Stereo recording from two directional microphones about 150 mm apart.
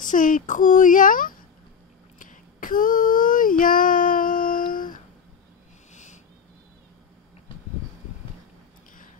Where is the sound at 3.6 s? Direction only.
65° left (ahead or behind).